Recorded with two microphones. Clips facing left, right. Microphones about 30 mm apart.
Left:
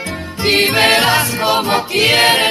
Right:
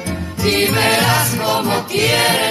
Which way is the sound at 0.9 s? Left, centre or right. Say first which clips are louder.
Left 3 dB; left.